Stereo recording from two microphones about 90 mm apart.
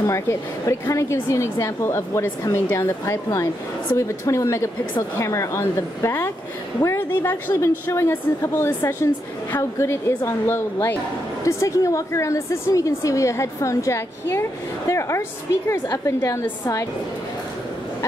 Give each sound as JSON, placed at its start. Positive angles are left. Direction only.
{"t": 0.0, "sound": "a woman's voice", "side_deg": 35}